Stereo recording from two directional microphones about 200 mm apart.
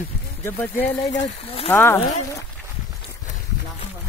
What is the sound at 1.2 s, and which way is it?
Speech, 30° left (ahead or behind).